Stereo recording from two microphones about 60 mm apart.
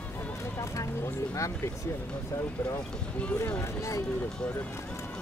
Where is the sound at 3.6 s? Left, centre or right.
Left.